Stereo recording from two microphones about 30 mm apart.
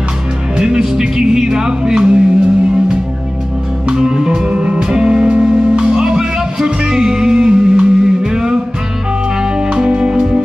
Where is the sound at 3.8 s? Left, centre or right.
Right.